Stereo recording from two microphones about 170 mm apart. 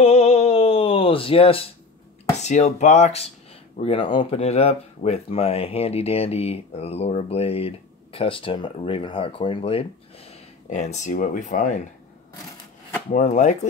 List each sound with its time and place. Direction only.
0.0 s a sound: 35° left (ahead or behind)
2.3 s speech: 40° left (ahead or behind)
13.1 s speech: 45° left (ahead or behind)